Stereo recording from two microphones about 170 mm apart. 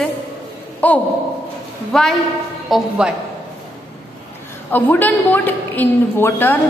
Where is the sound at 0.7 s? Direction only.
10° left (ahead or behind).